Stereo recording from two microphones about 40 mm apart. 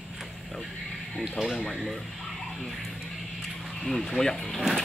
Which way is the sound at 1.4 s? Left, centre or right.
Centre.